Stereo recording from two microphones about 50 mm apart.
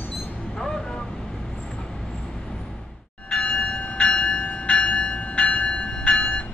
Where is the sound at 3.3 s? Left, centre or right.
Left.